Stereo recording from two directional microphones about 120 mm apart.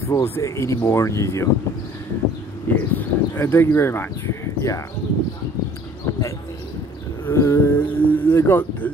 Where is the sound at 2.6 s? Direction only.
15° left (ahead or behind).